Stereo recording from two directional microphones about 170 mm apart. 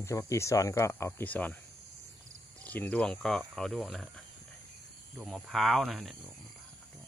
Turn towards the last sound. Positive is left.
turn(degrees=0)  # may be behind; listen again after turning